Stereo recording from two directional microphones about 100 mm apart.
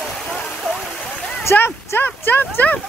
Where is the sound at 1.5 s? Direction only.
25° left (ahead or behind).